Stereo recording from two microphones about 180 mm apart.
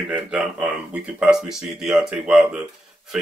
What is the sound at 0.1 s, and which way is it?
Speech, 5° right (ahead or behind).